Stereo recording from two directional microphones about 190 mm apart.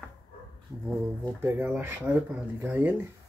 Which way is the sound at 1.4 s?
10° right (ahead or behind).